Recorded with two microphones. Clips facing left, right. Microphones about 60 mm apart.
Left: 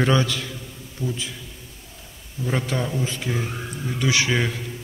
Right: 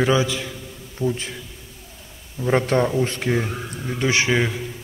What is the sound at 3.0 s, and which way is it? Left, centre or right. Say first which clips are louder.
Speech: right 5 dB; right.